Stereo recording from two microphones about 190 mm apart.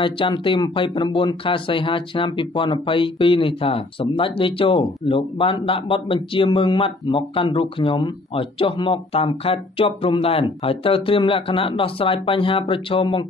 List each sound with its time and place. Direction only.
0.0 s speech: 25° left (ahead or behind)